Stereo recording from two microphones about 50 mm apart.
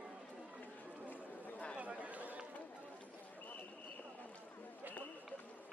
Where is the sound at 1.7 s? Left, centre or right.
Right.